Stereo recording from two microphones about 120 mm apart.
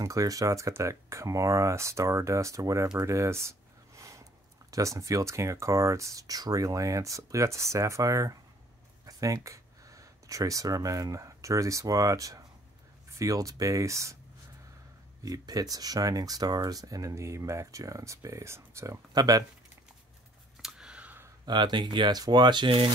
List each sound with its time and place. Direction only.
0.0 s speech: 30° right (ahead or behind)
15.2 s speech: 30° right (ahead or behind)
20.6 s clicking: 5° right (ahead or behind)
21.5 s speech: 35° right (ahead or behind)